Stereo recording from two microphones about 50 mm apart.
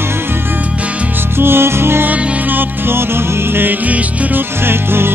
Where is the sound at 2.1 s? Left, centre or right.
Right.